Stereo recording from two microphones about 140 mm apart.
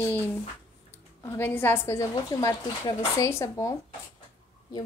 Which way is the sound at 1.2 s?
15° left (ahead or behind).